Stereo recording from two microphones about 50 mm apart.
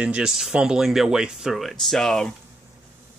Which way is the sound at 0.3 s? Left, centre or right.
Centre.